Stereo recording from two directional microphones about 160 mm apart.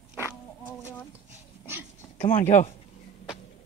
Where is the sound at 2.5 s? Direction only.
45° left (ahead or behind).